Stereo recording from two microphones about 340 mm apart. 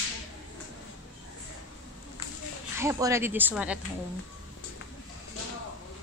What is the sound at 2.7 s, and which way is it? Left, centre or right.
Speech, centre.